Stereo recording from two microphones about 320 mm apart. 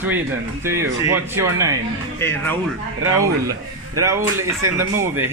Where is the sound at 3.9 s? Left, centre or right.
Centre.